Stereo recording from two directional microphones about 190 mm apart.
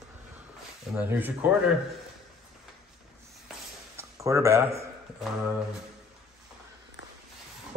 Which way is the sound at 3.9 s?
15° right (ahead or behind).